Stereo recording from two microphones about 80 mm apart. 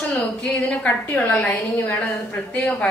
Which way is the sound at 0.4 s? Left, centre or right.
Centre.